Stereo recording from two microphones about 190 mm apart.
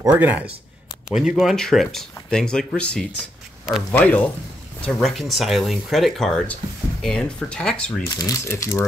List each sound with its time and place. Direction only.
0.0 s speech: 10° right (ahead or behind); by 8.0 s 5° left (ahead or behind)
8.2 s speech: 15° left (ahead or behind)